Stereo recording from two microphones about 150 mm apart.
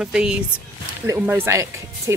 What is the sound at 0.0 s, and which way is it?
Speech, 5° right (ahead or behind).